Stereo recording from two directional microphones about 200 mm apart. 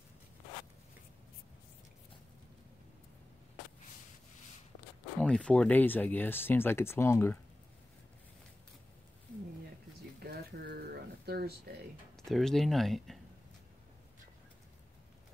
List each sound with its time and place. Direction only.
5.2 s speech: 5° left (ahead or behind)
10.2 s a sound: 50° right (ahead or behind)
12.3 s speech: centre (ahead or behind)